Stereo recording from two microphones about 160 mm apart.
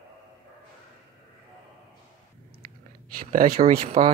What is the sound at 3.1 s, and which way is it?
Speech, 60° right (ahead or behind).